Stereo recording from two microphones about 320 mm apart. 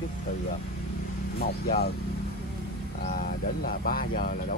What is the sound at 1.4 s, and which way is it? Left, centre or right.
Speech, left.